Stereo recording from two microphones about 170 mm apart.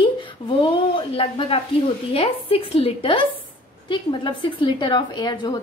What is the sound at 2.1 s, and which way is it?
A woman's voice, 35° left (ahead or behind).